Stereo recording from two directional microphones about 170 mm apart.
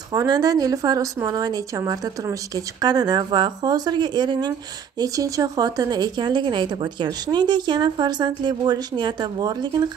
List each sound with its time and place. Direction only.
0.1 s a woman's voice: 20° right (ahead or behind)